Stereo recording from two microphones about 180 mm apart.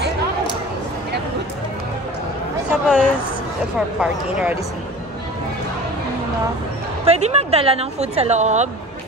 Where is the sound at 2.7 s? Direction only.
5° right (ahead or behind).